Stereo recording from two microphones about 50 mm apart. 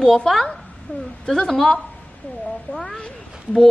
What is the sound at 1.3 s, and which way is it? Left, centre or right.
Speech, centre.